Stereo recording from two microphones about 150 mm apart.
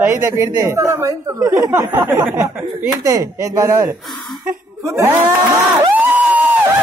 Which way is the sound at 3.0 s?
25° right (ahead or behind).